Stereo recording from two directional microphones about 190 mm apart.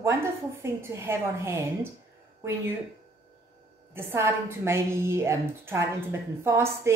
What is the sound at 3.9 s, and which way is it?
A woman's voice, 15° right (ahead or behind).